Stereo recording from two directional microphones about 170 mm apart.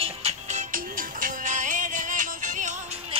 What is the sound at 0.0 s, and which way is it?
Music, 40° right (ahead or behind).